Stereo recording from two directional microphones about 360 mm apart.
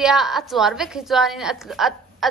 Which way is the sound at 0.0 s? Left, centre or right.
Centre.